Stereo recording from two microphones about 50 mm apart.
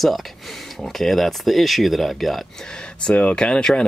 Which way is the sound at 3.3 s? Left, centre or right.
Centre.